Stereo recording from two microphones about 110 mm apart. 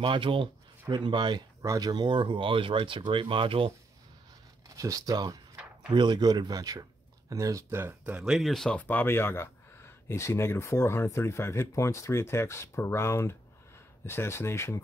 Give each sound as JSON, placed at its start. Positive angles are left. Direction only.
{"t": 0.0, "sound": "speech", "side_deg": -50}
{"t": 1.6, "sound": "speech", "side_deg": -35}
{"t": 4.6, "sound": "speech", "side_deg": -30}